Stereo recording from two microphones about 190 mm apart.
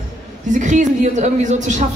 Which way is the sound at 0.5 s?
40° right (ahead or behind).